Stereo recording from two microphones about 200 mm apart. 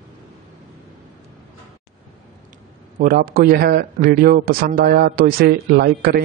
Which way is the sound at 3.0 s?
45° right (ahead or behind).